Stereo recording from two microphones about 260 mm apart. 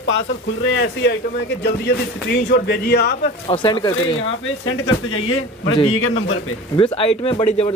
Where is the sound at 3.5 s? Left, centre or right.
Centre.